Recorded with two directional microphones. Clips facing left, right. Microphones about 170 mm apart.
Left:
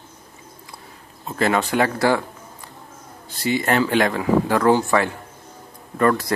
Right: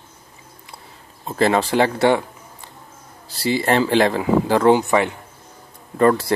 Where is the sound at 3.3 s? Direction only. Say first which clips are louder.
Right 2 dB; 30° right (ahead or behind).